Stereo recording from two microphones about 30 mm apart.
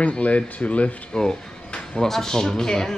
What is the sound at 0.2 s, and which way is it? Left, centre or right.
Speech, left.